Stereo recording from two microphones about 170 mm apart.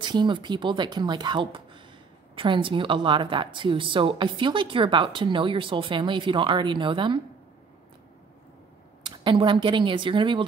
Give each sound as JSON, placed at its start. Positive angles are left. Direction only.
{"t": 0.0, "sound": "a woman's voice", "side_deg": -25}
{"t": 9.0, "sound": "speech", "side_deg": -30}